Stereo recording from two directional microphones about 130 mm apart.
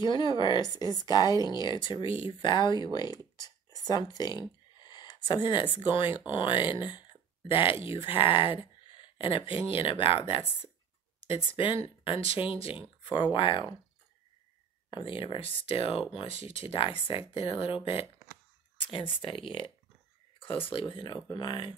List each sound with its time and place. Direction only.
0.0 s a woman's voice: 35° left (ahead or behind)
11.1 s a woman's voice: 45° left (ahead or behind)
14.9 s speech: 40° left (ahead or behind)
18.9 s a woman's voice: 40° left (ahead or behind)